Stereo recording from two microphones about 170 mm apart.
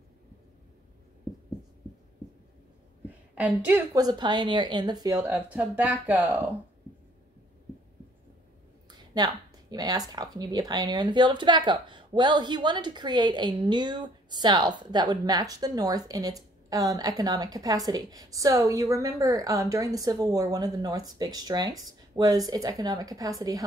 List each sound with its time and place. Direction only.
3.3 s speech: 10° right (ahead or behind)
3.9 s speech: 25° right (ahead or behind)
5.3 s speech: 10° right (ahead or behind)
8.9 s speech: 25° right (ahead or behind)